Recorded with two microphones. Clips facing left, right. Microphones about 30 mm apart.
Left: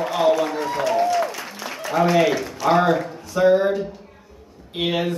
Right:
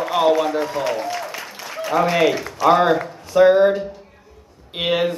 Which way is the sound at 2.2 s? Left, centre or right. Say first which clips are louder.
Right 2 dB; centre.